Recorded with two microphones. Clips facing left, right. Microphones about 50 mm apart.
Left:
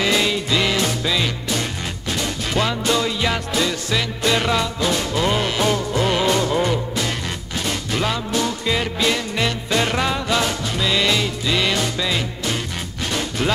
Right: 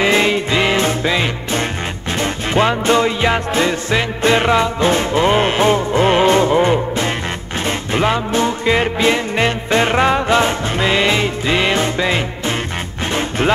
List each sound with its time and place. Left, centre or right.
0.0 s music: right